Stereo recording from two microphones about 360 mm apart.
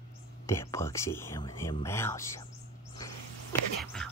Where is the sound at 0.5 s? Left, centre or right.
Centre.